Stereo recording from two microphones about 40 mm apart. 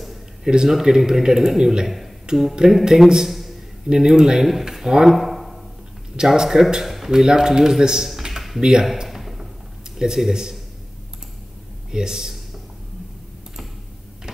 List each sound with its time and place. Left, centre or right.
0.0 s a sound: centre
0.5 s speech: centre
3.3 s a sound: centre
3.9 s speech: centre
5.1 s a sound: centre
6.1 s speech: centre
7.1 s speech: centre
8.2 s computer keyboard: centre
8.5 s speech: centre
9.1 s a sound: centre
9.9 s speech: centre
11.9 s speech: centre